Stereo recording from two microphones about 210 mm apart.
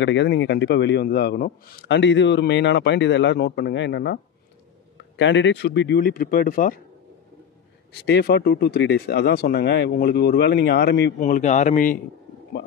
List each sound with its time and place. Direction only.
0.0 s a man's voice: 60° left (ahead or behind); by 6.8 s 40° left (ahead or behind)
8.0 s speech: 50° left (ahead or behind)
11.1 s speech: 35° left (ahead or behind)